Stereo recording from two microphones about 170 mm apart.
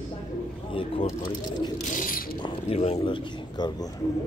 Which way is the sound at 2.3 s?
30° left (ahead or behind).